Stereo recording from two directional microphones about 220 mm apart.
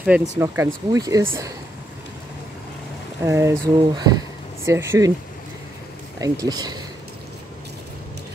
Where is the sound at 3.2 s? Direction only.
10° right (ahead or behind).